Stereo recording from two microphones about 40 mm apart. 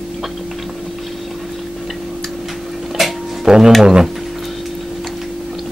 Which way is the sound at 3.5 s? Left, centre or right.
Centre.